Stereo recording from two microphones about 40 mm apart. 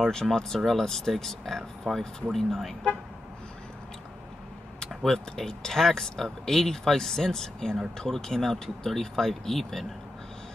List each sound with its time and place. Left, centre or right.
0.1 s speech: centre
5.0 s speech: centre